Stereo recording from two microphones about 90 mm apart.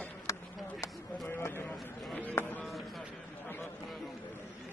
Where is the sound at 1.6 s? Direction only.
15° left (ahead or behind).